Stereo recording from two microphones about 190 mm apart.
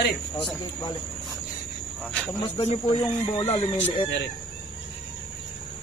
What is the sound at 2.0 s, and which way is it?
Speech, 5° left (ahead or behind).